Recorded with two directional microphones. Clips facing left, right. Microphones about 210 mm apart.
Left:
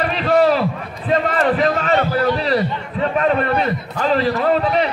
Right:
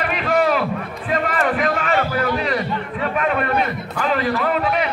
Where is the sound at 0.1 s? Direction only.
35° left (ahead or behind).